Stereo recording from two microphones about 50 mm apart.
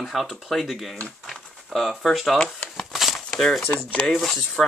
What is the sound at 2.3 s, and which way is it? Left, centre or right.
Typewriter, centre.